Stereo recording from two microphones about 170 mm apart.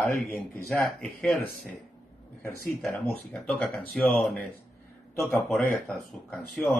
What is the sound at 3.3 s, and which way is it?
Speech, 5° left (ahead or behind).